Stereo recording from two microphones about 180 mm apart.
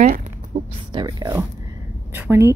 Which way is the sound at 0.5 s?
35° right (ahead or behind).